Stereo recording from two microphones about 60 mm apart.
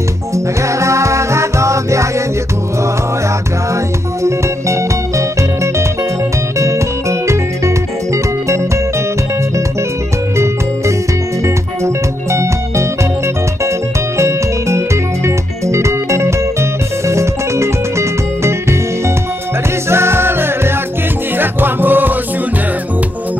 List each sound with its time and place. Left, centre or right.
0.3 s music: right
4.2 s music: right
10.3 s music: right
14.1 s music: right